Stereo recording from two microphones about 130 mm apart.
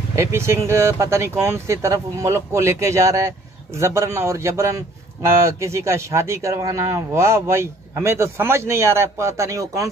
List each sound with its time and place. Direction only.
0.1 s speech: 20° right (ahead or behind)